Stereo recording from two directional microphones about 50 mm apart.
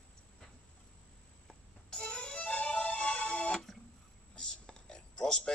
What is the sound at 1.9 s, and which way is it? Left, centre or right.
Music, centre.